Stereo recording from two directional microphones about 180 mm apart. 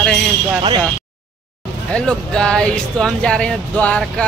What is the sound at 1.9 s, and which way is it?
Speech, 5° left (ahead or behind).